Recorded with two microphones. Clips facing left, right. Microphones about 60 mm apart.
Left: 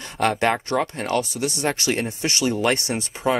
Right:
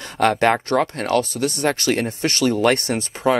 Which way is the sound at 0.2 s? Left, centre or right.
Right.